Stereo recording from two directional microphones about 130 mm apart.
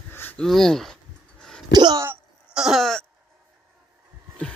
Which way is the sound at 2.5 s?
5° right (ahead or behind).